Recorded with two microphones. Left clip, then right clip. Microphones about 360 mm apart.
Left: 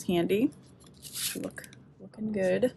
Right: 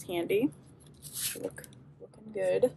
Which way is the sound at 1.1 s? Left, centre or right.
Centre.